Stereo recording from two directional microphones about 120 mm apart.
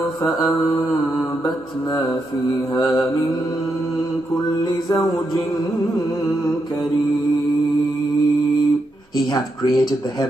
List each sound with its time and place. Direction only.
9.3 s speech: 35° left (ahead or behind)